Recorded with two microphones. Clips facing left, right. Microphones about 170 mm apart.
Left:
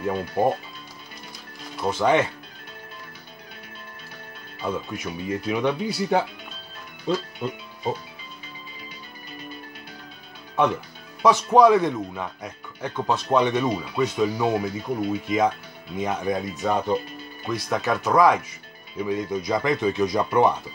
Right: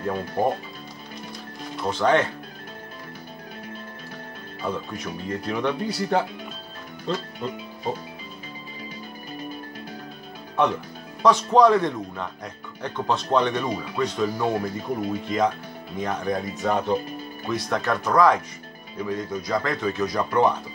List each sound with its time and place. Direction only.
0.0 s speech: 5° left (ahead or behind)
1.8 s speech: 10° left (ahead or behind)
4.6 s speech: 5° left (ahead or behind)
7.1 s music: 5° left (ahead or behind)
11.2 s speech: 5° left (ahead or behind)